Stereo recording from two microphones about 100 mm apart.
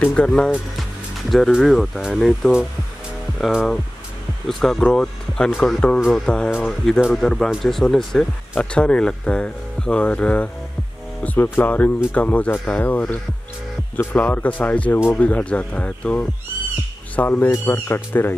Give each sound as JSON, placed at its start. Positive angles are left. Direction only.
{"t": 0.0, "sound": "speech", "side_deg": 10}